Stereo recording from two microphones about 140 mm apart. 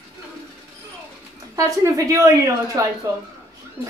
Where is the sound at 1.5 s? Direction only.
25° right (ahead or behind).